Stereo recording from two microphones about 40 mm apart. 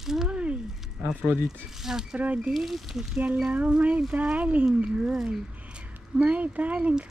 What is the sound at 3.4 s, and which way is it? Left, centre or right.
Speech, right.